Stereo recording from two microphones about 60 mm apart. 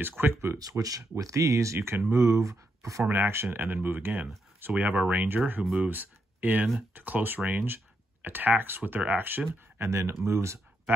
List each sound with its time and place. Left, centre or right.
0.2 s speech: right
0.6 s speech: right
3.1 s speech: right
4.7 s speech: right
9.8 s speech: right